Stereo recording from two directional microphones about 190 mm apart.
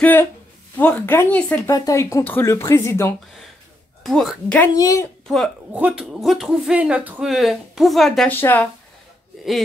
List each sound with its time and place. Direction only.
0.0 s speech: 10° left (ahead or behind)
4.0 s speech: centre (ahead or behind)
4.7 s speech: 15° left (ahead or behind)
5.3 s speech: 5° right (ahead or behind)